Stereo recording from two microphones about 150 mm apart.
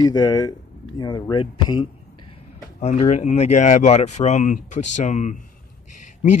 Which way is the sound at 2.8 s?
50° left (ahead or behind).